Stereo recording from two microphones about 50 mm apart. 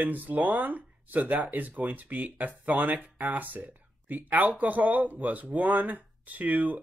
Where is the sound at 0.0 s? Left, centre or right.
Right.